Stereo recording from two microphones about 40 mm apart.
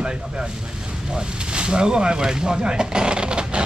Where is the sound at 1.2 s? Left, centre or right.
Right.